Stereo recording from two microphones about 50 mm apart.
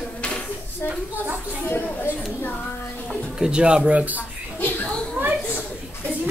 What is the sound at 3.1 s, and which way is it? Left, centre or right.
Speech, centre.